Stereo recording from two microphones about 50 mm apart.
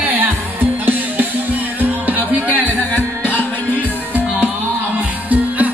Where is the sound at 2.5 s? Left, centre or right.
Left.